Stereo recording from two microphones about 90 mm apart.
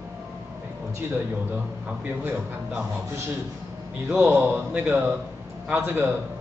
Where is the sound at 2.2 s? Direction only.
20° right (ahead or behind).